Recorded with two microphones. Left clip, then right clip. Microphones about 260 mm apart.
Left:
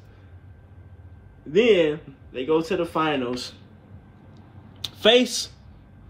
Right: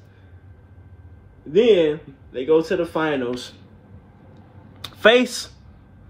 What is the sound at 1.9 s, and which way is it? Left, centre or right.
Speech, centre.